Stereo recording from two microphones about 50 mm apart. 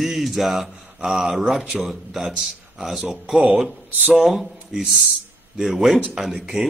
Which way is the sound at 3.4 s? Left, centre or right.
Right.